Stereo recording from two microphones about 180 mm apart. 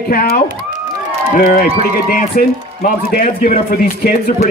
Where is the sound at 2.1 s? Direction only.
50° left (ahead or behind).